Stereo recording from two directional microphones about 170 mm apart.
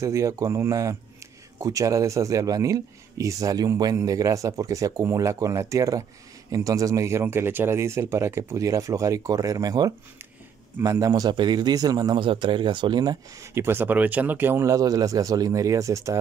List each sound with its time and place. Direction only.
0.0 s a man's voice: 20° right (ahead or behind)